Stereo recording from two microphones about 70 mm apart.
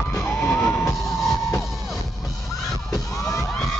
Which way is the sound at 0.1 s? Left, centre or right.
Left.